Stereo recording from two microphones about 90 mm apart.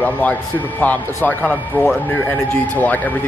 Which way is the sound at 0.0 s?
20° left (ahead or behind).